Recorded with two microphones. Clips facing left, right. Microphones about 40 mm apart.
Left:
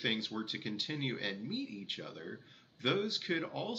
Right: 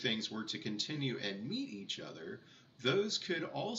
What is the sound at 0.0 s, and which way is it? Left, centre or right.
Speech, centre.